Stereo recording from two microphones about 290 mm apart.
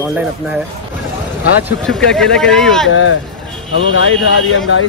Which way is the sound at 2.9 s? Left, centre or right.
Left.